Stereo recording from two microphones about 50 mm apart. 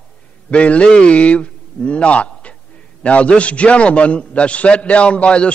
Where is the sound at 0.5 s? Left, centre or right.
Left.